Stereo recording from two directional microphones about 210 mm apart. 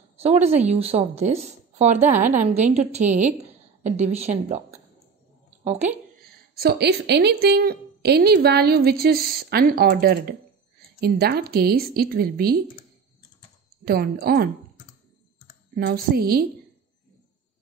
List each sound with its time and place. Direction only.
0.2 s a woman's voice: 30° right (ahead or behind)
5.6 s a woman's voice: 30° right (ahead or behind)
6.5 s a woman's voice: 50° right (ahead or behind)
13.8 s a woman's voice: 45° right (ahead or behind)
15.7 s a woman's voice: 50° right (ahead or behind)